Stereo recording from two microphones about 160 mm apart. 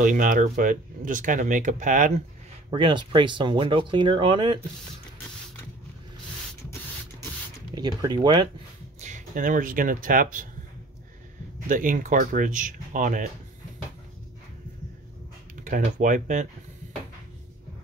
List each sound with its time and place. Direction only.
0.0 s speech: 55° right (ahead or behind)
2.7 s speech: 30° right (ahead or behind)
7.7 s speech: 25° right (ahead or behind)
9.0 s speech: 50° right (ahead or behind)
11.6 s speech: 55° right (ahead or behind)
15.6 s speech: 55° right (ahead or behind)